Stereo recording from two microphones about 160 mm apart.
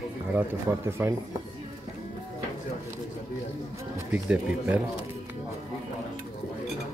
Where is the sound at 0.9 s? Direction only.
15° right (ahead or behind).